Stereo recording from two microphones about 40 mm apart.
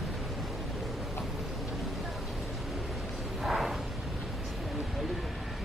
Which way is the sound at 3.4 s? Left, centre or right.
Centre.